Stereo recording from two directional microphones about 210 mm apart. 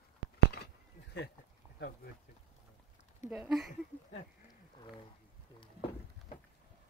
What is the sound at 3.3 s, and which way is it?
Speech, centre (ahead or behind).